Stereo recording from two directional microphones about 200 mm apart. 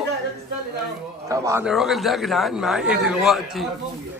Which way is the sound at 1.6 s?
Centre (ahead or behind).